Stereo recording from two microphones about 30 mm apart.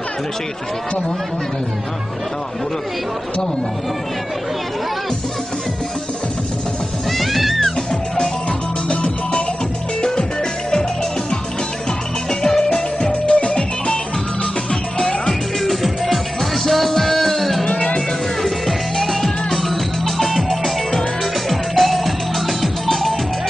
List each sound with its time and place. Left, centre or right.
7.1 s music: centre
12.3 s music: centre
13.0 s music: left
14.4 s music: centre
15.6 s music: centre